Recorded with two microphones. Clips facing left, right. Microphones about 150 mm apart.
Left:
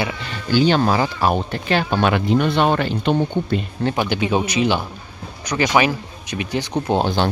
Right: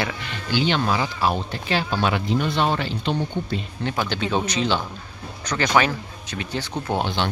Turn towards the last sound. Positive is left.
turn(degrees=40)  # may be behind; listen again after turning